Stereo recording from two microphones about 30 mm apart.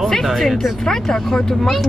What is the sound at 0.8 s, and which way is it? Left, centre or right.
Speech, centre.